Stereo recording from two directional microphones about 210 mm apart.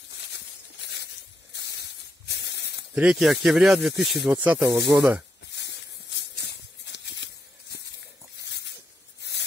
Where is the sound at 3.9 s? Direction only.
55° left (ahead or behind).